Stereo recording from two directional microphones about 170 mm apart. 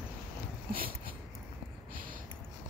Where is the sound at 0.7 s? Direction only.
55° right (ahead or behind).